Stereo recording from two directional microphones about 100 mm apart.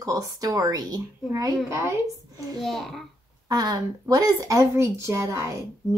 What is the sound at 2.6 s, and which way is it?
Speech, centre (ahead or behind).